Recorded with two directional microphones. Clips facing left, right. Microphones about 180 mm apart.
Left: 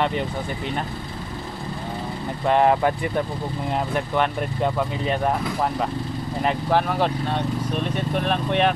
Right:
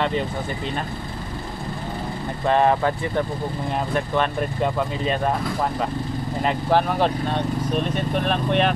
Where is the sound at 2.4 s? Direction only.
15° left (ahead or behind).